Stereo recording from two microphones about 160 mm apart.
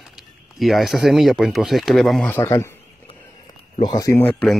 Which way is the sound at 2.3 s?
15° left (ahead or behind).